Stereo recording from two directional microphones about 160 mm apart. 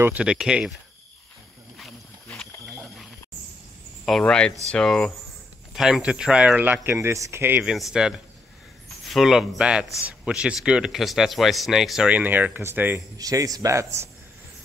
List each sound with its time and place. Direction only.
0.0 s speech: 10° right (ahead or behind)
2.2 s a sound: centre (ahead or behind)
4.0 s speech: 5° left (ahead or behind); by 14.0 s 20° right (ahead or behind)